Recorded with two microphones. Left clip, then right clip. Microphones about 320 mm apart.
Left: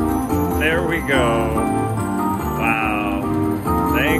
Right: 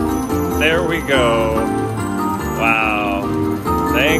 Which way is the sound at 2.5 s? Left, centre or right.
Centre.